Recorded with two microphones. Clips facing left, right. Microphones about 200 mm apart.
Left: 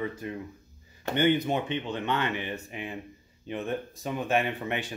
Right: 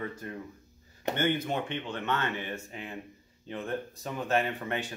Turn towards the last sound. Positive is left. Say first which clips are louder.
# left 2 dB
turn(degrees=15)  # may be behind; listen again after turning